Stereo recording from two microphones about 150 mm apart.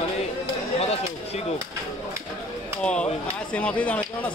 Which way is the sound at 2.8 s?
5° left (ahead or behind).